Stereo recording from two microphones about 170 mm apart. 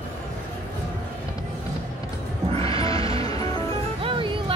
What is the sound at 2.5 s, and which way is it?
Music, 35° right (ahead or behind).